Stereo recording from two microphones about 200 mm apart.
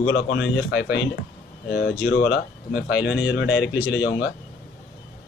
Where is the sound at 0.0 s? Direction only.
65° left (ahead or behind).